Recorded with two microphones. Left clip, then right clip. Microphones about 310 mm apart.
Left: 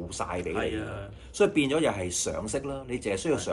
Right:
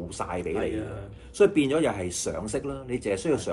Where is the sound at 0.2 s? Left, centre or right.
Centre.